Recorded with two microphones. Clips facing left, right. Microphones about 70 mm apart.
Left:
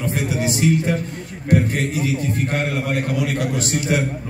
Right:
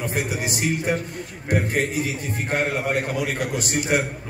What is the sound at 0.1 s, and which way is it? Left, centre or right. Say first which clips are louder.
Speech: left 4 dB; centre.